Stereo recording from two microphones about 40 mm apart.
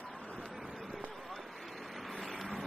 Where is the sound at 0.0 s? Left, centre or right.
Left.